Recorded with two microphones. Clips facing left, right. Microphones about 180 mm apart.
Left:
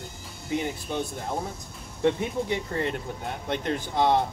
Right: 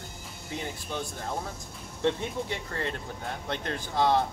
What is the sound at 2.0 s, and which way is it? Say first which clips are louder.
Speech: left 4 dB; 15° left (ahead or behind).